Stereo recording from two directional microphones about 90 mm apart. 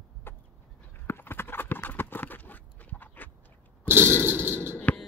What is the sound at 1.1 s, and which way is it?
Clip-clop, 25° left (ahead or behind).